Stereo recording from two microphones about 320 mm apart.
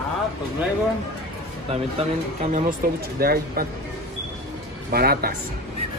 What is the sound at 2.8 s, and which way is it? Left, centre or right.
Speech, right.